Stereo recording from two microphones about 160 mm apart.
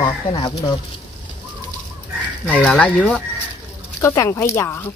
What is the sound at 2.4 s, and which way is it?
Speech, 5° left (ahead or behind).